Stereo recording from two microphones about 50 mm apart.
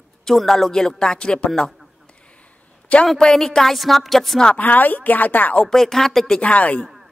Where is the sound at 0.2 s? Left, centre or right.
Centre.